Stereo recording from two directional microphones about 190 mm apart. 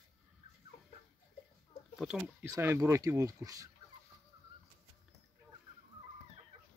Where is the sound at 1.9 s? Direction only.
Centre (ahead or behind).